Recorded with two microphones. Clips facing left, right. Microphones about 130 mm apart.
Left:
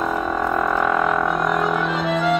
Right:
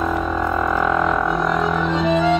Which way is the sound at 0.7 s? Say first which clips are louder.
Right 2 dB; centre (ahead or behind).